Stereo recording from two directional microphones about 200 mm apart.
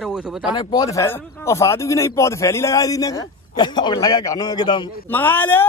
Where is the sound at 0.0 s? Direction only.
5° right (ahead or behind).